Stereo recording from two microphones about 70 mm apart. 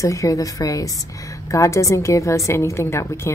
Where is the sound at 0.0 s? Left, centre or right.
Left.